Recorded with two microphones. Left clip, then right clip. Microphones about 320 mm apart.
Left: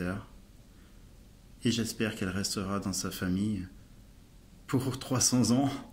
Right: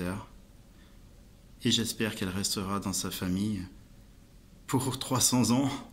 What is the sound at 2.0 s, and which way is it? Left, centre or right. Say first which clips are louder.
Speech: right 1 dB; centre.